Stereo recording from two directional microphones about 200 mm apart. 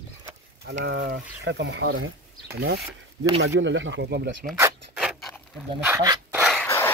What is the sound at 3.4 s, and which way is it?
Speech, 70° right (ahead or behind).